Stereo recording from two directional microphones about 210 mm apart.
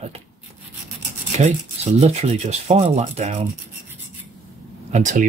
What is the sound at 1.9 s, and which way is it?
Speech, 30° right (ahead or behind).